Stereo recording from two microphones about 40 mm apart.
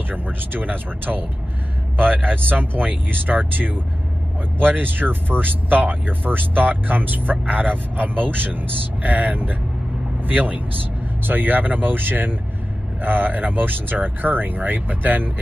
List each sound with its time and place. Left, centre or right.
0.1 s speech: right